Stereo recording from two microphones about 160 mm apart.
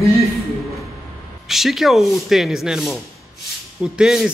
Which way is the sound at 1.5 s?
Centre (ahead or behind).